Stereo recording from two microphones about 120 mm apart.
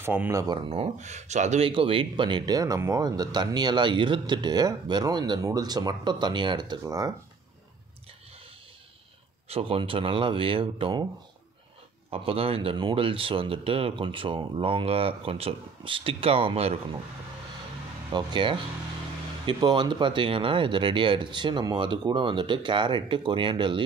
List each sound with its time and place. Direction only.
0.0 s speech: 15° right (ahead or behind)
0.3 s speech: 25° right (ahead or behind)
0.6 s speech: 50° right (ahead or behind); by 1.7 s 75° right (ahead or behind)
1.7 s speech: 50° right (ahead or behind)
9.5 s speech: 50° right (ahead or behind)
12.1 s speech: 55° right (ahead or behind)
18.1 s speech: 40° right (ahead or behind)